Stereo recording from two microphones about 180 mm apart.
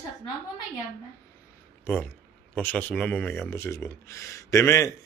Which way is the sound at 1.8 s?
10° left (ahead or behind).